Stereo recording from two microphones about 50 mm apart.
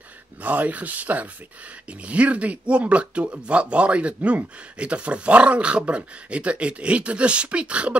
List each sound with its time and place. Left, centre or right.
0.4 s speech: right